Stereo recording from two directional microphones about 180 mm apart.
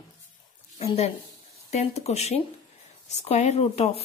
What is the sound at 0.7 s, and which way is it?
A woman's voice, 35° left (ahead or behind).